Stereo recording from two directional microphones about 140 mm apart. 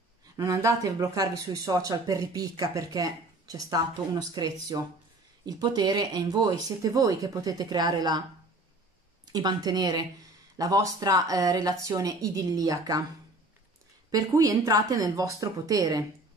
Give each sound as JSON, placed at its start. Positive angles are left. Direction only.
{"t": 0.4, "sound": "speech", "side_deg": -20}
{"t": 9.2, "sound": "speech", "side_deg": -30}
{"t": 14.1, "sound": "speech", "side_deg": -25}